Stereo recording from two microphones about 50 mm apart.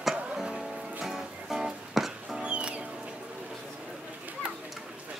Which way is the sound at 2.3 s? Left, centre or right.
Right.